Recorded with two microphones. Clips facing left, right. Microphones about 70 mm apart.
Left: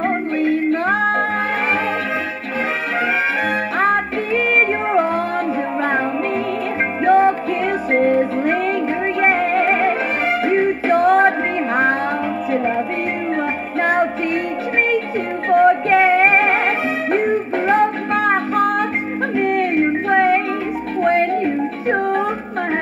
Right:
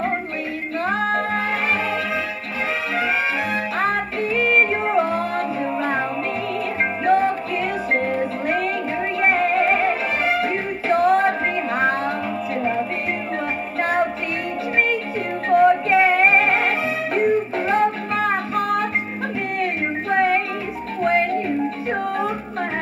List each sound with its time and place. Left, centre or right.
0.0 s music: left
3.8 s music: left
7.1 s music: left
13.7 s music: left
15.5 s music: left
19.3 s a sound: left
21.0 s music: left